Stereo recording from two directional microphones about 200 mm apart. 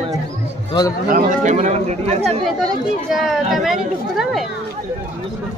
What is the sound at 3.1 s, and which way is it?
A child's voice, centre (ahead or behind).